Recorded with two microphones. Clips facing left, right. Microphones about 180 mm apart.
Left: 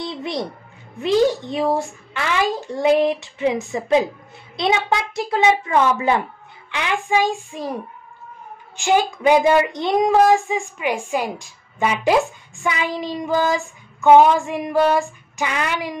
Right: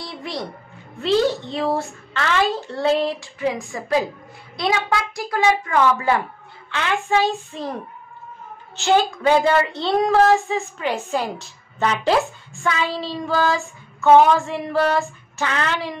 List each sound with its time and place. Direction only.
0.0 s music: 20° left (ahead or behind)
0.9 s a child's voice: 15° left (ahead or behind)
8.7 s speech: 15° left (ahead or behind)